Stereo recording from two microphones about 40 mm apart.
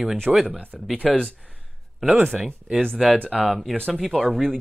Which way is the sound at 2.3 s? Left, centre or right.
Centre.